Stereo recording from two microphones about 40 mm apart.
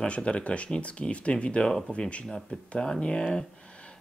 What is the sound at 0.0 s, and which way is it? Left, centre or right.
Speech, left.